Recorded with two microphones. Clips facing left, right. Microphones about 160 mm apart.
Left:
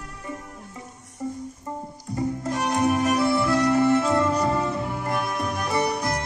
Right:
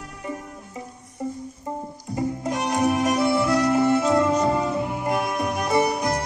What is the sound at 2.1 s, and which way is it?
Music, 15° right (ahead or behind).